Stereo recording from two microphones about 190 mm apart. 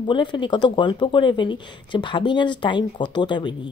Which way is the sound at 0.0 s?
25° left (ahead or behind).